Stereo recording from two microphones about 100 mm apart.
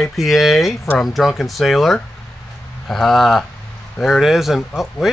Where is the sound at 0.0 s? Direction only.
Centre (ahead or behind).